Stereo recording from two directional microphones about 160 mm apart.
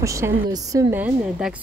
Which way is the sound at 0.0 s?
20° right (ahead or behind).